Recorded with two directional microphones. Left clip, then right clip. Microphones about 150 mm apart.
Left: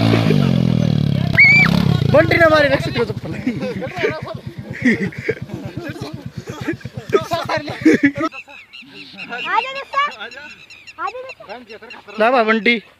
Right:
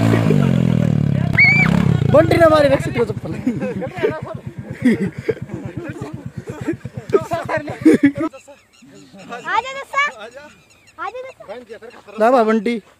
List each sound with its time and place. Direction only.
0.1 s wild animals: 5° right (ahead or behind)
5.9 s a sound: 10° right (ahead or behind)
9.5 s speech: 15° left (ahead or behind)
11.5 s speech: 45° right (ahead or behind)
12.2 s speech: 5° right (ahead or behind)